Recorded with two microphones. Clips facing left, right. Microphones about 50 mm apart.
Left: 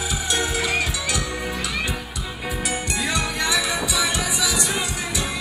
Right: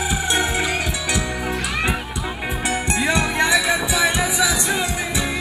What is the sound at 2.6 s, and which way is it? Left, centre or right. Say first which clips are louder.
Music: right 6 dB; right.